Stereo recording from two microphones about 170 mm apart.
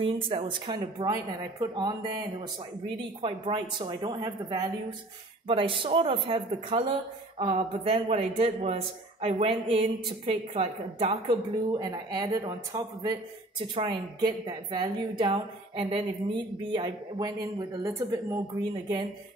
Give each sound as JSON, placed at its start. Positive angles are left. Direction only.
{"t": 0.0, "sound": "a woman's voice", "side_deg": -30}
{"t": 3.2, "sound": "a woman's voice", "side_deg": -30}